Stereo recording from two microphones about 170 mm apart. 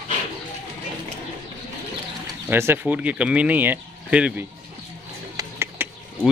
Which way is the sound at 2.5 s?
15° right (ahead or behind).